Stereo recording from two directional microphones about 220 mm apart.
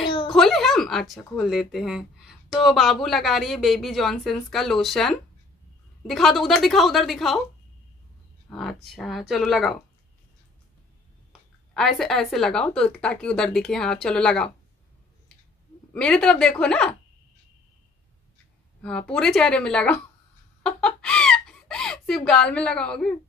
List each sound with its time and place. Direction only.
0.0 s a sound: 20° left (ahead or behind)
0.3 s speech: centre (ahead or behind)
8.5 s speech: centre (ahead or behind)
11.7 s speech: centre (ahead or behind)
15.9 s speech: 5° left (ahead or behind)
18.8 s speech: 5° left (ahead or behind)
20.6 s chicken: 5° left (ahead or behind)